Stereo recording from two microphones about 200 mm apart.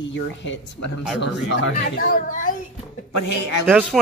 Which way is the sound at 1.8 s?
45° left (ahead or behind).